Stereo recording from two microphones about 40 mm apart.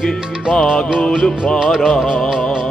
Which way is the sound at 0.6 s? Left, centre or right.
Left.